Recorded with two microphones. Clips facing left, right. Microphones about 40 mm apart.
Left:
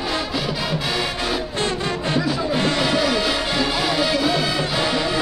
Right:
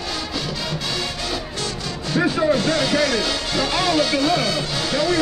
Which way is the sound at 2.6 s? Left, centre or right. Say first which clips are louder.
Even; left.